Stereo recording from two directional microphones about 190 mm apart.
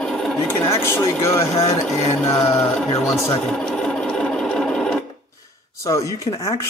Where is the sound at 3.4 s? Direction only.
5° left (ahead or behind).